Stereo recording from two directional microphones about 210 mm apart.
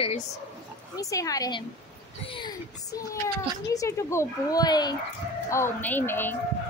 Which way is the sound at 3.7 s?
15° left (ahead or behind).